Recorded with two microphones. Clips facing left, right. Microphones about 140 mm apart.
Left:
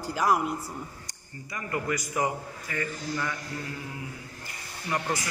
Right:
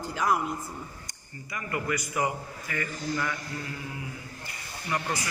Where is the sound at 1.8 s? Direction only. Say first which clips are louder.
Even; 40° left (ahead or behind).